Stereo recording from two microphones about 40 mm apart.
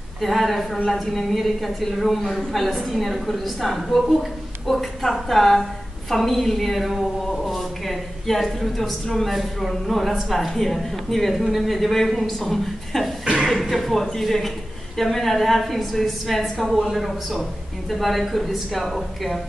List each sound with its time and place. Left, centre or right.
0.2 s a woman's voice: centre
13.2 s a sound: centre
13.5 s a woman's voice: centre